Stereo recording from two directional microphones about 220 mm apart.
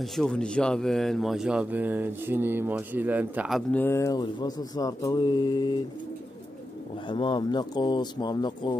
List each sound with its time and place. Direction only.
0.0 s speech: centre (ahead or behind); by 5.8 s 20° left (ahead or behind)
7.1 s speech: 20° left (ahead or behind)